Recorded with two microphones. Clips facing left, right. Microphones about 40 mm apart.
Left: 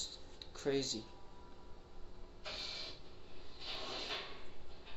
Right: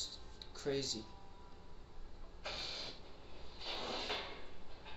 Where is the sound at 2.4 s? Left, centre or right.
Right.